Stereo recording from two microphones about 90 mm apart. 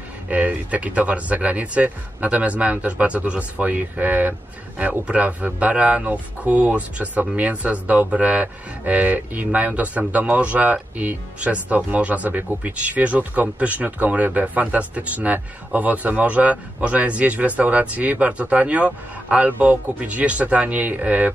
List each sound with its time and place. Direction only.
0.3 s speech: 15° right (ahead or behind)